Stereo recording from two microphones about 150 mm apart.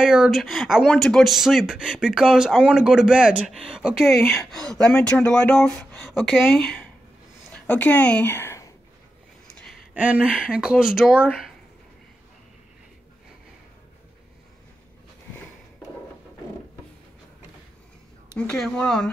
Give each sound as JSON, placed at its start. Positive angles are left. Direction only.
{"t": 0.0, "sound": "speech", "side_deg": -5}
{"t": 4.2, "sound": "speech", "side_deg": 15}
{"t": 4.5, "sound": "speech", "side_deg": 5}
{"t": 9.9, "sound": "speech", "side_deg": -10}
{"t": 18.5, "sound": "speech", "side_deg": 5}